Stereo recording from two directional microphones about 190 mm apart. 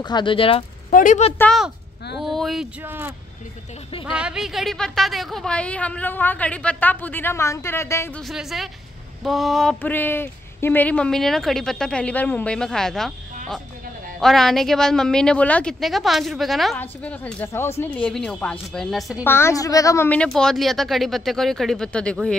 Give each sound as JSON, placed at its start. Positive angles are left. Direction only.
{"t": 0.0, "sound": "speech", "side_deg": 25}
{"t": 0.9, "sound": "a woman's voice", "side_deg": 40}
{"t": 1.4, "sound": "a woman's voice", "side_deg": 0}
{"t": 8.2, "sound": "speech", "side_deg": 0}
{"t": 14.2, "sound": "a woman's voice", "side_deg": 0}
{"t": 19.2, "sound": "speech", "side_deg": 15}